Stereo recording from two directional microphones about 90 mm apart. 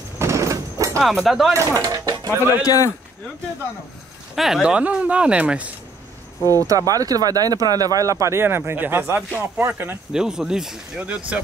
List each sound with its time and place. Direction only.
0.2 s a sound: 35° right (ahead or behind)
1.2 s speech: 5° right (ahead or behind)
1.5 s speech: 35° right (ahead or behind)
2.6 s speech: 40° left (ahead or behind)
4.4 s speech: 5° right (ahead or behind)
6.4 s speech: 40° right (ahead or behind); by 9.9 s 25° right (ahead or behind)
10.1 s speech: 5° right (ahead or behind)